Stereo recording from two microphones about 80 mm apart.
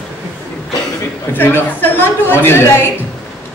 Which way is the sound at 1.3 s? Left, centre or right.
Left.